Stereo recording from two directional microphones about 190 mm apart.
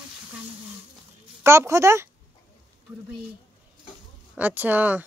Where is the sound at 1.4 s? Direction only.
15° right (ahead or behind).